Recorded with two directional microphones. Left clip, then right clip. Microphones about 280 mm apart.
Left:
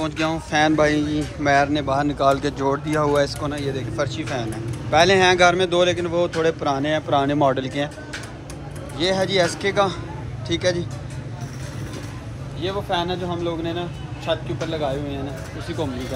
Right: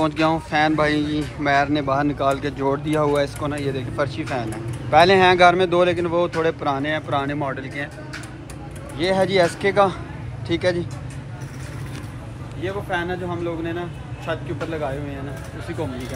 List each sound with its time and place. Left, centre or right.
0.0 s a man's voice: centre
7.6 s speech: left
8.9 s speech: centre
12.6 s a man's voice: centre